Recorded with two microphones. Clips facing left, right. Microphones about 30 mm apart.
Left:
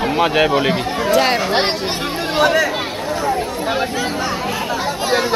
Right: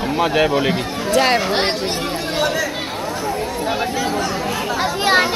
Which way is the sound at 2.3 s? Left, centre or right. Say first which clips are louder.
Left 6 dB; left.